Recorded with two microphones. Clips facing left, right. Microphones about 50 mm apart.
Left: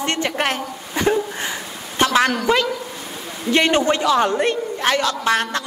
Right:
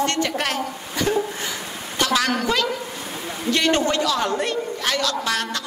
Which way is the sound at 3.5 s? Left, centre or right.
Left.